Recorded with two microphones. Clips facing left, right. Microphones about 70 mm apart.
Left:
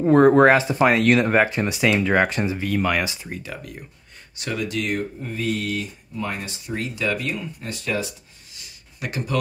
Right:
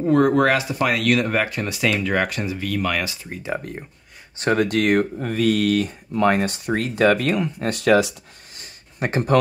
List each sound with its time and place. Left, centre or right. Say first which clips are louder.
0.0 s speech: left 3 dB; left
3.5 s speech: right 7 dB; right
5.2 s speech: right 7 dB; right
7.3 s speech: right 8 dB; right
8.5 s a sound: right 8 dB; right